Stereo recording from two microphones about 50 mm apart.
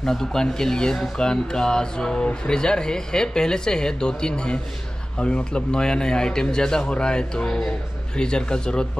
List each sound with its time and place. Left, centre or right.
0.0 s speech: centre